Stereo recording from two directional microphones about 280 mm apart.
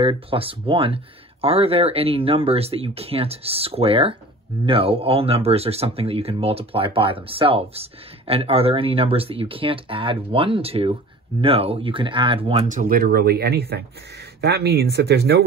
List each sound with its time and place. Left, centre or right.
0.0 s speech: centre; by 15.4 s right